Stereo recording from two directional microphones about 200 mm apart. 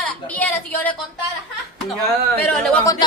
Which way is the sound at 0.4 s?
10° left (ahead or behind).